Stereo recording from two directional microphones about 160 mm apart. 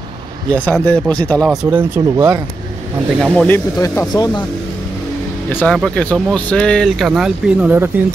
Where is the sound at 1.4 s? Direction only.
15° right (ahead or behind).